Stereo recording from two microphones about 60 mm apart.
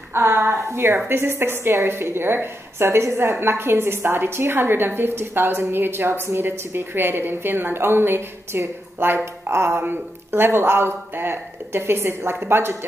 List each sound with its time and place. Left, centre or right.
0.1 s a woman's voice: right